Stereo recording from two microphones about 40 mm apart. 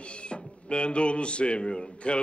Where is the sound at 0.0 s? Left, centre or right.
Left.